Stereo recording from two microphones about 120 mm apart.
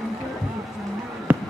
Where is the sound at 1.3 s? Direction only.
15° right (ahead or behind).